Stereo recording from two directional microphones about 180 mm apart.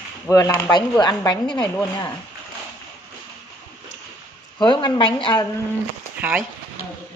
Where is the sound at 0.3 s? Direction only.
20° left (ahead or behind).